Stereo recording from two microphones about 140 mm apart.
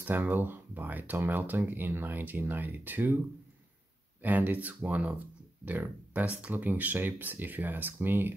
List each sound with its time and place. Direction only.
0.0 s speech: 15° right (ahead or behind)
4.2 s speech: 10° right (ahead or behind)